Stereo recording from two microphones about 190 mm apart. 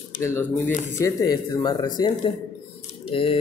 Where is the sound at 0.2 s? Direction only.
15° left (ahead or behind).